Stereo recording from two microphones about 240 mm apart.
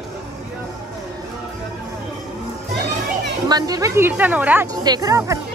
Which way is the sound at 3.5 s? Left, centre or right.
Centre.